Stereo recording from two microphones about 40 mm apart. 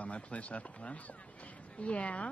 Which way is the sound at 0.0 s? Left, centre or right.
Left.